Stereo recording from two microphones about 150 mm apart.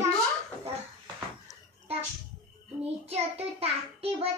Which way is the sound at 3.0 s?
45° right (ahead or behind).